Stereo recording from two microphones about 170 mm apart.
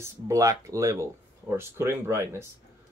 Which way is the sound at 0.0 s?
20° right (ahead or behind).